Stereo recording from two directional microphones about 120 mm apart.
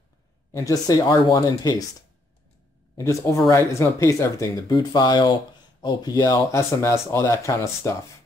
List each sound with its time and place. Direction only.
0.5 s speech: 30° left (ahead or behind)